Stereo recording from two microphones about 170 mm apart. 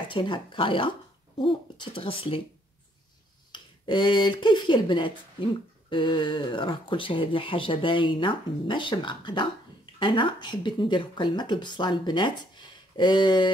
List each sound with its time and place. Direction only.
0.1 s speech: 30° left (ahead or behind)
3.5 s speech: 25° left (ahead or behind)